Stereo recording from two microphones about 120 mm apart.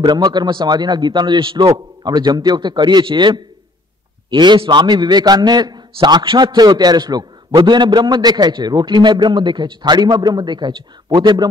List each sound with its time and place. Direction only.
0.0 s a man's voice: 35° right (ahead or behind)